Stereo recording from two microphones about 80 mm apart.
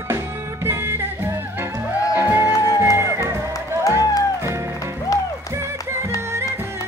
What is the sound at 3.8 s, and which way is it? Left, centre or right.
Music, left.